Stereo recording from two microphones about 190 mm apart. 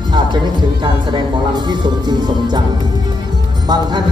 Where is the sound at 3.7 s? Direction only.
20° right (ahead or behind).